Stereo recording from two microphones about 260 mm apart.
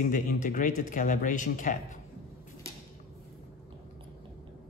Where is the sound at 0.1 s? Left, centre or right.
Left.